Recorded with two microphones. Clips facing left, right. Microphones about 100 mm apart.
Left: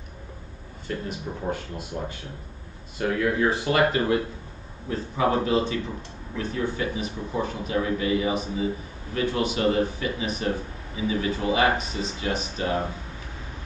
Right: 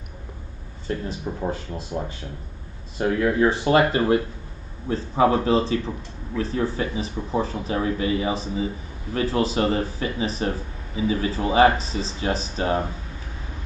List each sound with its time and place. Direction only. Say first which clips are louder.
0.8 s speech: right 3 dB; 30° right (ahead or behind)